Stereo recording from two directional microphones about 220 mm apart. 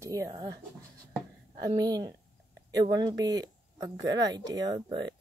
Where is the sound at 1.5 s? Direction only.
15° right (ahead or behind).